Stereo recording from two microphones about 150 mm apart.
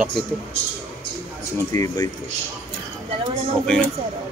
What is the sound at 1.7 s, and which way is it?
Speech, 25° left (ahead or behind).